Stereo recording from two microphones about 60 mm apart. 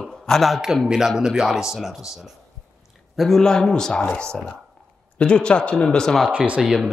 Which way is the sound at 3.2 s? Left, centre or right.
Centre.